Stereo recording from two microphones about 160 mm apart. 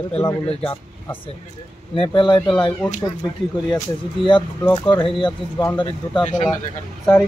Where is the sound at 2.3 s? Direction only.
5° left (ahead or behind).